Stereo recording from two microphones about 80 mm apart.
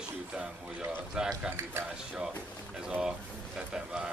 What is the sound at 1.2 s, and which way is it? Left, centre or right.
Speech, centre.